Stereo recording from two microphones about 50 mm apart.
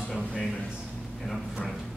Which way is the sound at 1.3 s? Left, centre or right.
Centre.